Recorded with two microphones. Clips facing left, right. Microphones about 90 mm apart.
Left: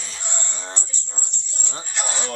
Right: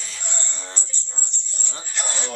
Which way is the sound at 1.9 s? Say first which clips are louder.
Left 2 dB; 5° left (ahead or behind).